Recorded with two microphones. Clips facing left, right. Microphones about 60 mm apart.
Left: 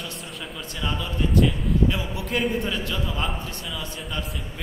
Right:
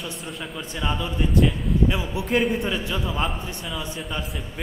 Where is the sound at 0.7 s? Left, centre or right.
Right.